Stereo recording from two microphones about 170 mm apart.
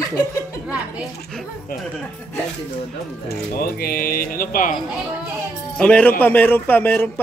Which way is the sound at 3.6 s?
60° left (ahead or behind).